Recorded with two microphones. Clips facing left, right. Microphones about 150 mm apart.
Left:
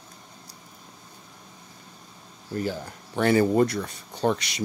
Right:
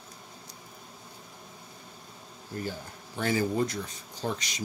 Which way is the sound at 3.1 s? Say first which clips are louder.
Left 8 dB; 65° left (ahead or behind).